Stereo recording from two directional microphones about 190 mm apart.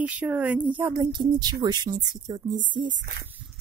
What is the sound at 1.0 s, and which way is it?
Speech, 20° right (ahead or behind).